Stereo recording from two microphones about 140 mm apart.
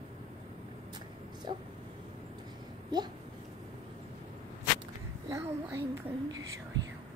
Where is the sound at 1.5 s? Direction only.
35° right (ahead or behind).